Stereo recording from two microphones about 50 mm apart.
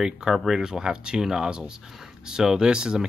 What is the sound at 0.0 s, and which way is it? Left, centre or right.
Speech, centre.